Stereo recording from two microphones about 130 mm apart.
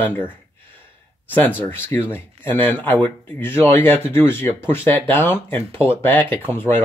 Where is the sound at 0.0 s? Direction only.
15° left (ahead or behind).